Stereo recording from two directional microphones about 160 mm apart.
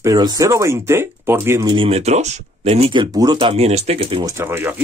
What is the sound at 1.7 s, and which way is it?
Speech, 35° right (ahead or behind).